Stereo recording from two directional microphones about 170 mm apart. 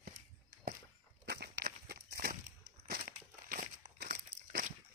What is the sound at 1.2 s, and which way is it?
Walk, 70° right (ahead or behind).